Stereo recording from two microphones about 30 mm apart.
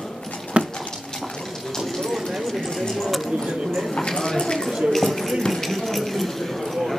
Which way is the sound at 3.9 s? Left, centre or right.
Left.